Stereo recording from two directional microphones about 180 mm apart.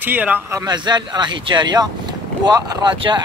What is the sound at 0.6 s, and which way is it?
Speech, 25° right (ahead or behind).